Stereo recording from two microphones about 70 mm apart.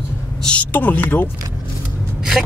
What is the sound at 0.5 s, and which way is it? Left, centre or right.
Speech, left.